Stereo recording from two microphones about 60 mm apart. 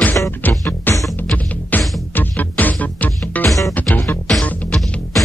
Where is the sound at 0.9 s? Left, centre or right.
Left.